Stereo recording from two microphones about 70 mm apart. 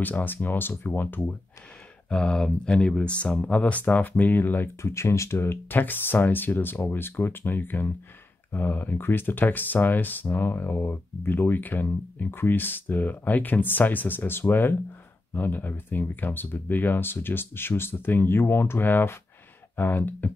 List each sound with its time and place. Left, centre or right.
0.0 s speech: left
2.0 s speech: centre
4.8 s speech: left